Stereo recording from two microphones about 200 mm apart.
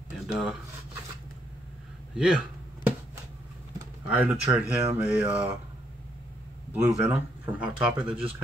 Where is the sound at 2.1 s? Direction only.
5° right (ahead or behind).